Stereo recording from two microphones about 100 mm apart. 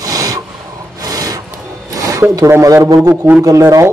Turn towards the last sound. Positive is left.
turn(degrees=-35)  # may be behind; listen again after turning